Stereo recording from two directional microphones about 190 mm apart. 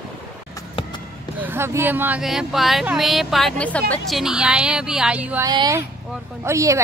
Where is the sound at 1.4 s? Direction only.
10° right (ahead or behind).